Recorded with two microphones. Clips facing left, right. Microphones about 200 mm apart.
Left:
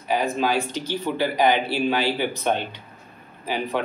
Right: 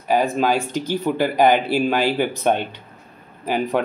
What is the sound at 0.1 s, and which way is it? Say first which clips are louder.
Speech: right 4 dB; 50° right (ahead or behind).